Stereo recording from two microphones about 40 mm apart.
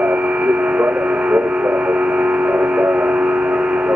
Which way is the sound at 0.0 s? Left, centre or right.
Right.